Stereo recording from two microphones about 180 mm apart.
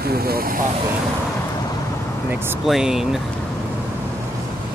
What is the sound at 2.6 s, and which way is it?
Speech, centre (ahead or behind).